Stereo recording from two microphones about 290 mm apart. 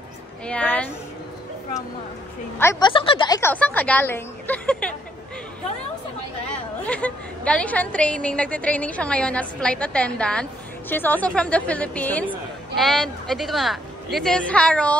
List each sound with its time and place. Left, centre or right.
0.5 s a woman's voice: centre
2.6 s speech: centre
6.9 s a woman's voice: centre